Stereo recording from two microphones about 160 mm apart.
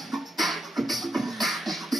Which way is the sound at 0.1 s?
Centre (ahead or behind).